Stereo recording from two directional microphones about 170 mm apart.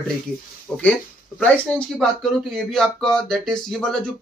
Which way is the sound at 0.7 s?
Centre (ahead or behind).